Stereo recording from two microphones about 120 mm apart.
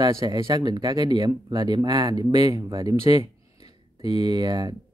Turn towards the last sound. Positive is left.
turn(degrees=-35)  # may be behind; listen again after turning